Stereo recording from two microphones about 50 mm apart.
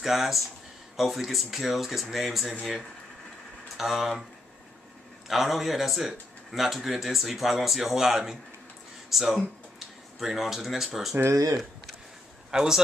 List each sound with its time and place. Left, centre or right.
0.0 s speech: centre
3.7 s speech: centre
5.3 s speech: centre
11.1 s speech: right
12.4 s a man's voice: centre